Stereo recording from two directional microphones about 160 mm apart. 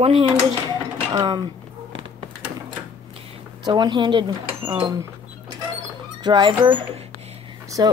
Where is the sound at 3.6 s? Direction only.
25° right (ahead or behind).